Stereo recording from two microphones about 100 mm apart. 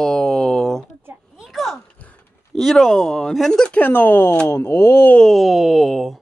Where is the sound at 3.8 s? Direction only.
20° left (ahead or behind).